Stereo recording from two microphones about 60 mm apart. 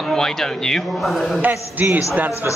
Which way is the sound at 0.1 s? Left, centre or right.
Centre.